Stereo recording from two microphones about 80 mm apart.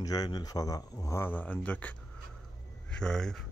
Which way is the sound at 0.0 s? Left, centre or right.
Left.